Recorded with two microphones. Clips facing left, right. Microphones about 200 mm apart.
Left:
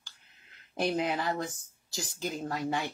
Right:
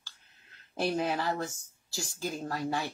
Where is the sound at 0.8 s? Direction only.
15° left (ahead or behind).